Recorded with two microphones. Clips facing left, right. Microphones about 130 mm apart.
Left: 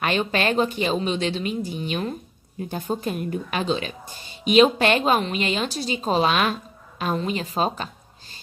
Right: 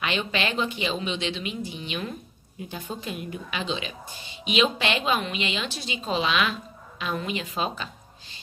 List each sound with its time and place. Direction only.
0.0 s speech: 45° left (ahead or behind)